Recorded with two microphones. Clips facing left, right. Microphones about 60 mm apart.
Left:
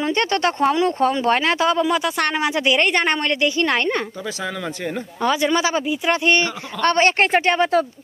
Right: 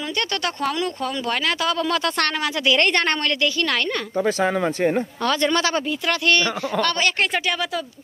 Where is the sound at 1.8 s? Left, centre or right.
Centre.